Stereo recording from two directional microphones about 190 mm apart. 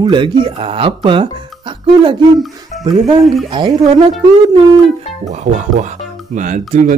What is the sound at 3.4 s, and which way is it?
Speech, 25° right (ahead or behind).